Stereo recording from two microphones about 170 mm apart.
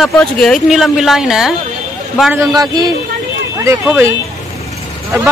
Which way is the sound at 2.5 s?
20° right (ahead or behind).